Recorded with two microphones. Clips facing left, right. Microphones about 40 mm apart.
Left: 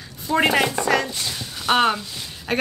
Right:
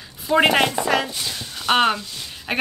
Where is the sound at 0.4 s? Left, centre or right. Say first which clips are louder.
Right 2 dB; right.